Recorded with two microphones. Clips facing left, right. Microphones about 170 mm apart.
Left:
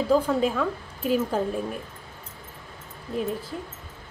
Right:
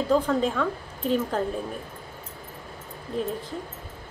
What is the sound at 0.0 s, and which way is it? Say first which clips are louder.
A woman's voice: left 1 dB; 10° left (ahead or behind).